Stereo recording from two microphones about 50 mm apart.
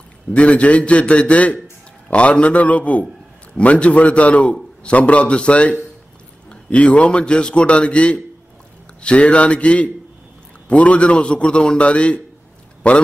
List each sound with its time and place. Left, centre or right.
0.3 s a man's voice: left